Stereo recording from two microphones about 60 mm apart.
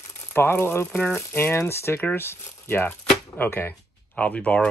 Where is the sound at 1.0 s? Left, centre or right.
Left.